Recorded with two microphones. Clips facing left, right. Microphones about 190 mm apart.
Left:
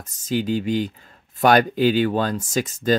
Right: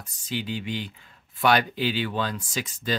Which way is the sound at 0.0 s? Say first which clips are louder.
Left 8 dB; 45° left (ahead or behind).